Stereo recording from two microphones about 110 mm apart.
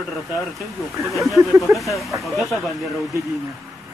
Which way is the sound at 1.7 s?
Centre (ahead or behind).